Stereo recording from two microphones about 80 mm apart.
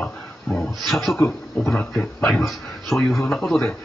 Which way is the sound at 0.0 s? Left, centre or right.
Centre.